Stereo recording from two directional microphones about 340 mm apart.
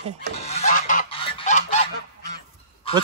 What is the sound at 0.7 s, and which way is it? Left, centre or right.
Goose, left.